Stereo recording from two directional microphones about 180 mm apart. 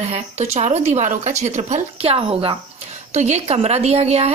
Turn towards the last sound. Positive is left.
turn(degrees=-35)  # may be behind; listen again after turning